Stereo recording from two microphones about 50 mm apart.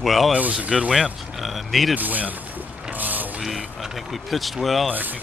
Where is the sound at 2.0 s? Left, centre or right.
Right.